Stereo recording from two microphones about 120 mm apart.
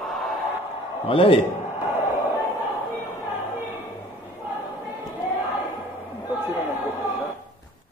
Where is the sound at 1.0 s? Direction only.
50° left (ahead or behind).